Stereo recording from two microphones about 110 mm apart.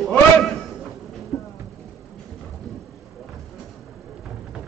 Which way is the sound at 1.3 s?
50° left (ahead or behind).